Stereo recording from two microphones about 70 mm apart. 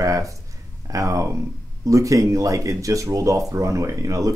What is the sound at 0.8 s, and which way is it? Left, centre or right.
Speech, right.